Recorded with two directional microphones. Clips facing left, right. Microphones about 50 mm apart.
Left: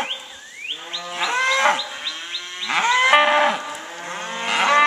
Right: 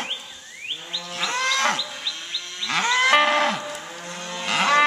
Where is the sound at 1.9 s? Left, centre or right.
Left.